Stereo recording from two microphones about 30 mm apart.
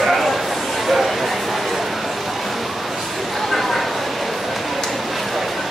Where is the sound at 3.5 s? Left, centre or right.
Centre.